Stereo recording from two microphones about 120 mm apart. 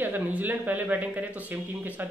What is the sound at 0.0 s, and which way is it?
Speech, 15° right (ahead or behind).